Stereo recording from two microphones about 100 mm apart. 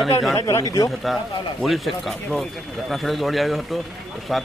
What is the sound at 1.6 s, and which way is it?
A man's voice, centre (ahead or behind).